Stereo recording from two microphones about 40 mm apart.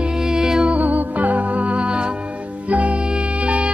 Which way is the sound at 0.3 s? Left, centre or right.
Centre.